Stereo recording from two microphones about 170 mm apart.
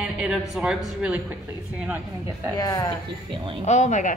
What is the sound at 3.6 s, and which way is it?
Speech, 45° left (ahead or behind).